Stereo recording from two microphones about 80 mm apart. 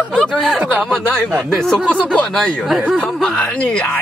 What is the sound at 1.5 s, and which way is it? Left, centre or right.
A woman's voice, centre.